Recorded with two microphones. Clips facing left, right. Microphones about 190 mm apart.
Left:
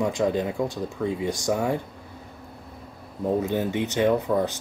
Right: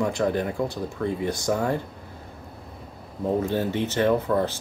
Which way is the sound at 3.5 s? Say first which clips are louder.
Even; 15° left (ahead or behind).